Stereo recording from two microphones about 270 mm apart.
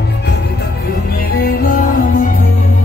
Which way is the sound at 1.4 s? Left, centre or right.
Left.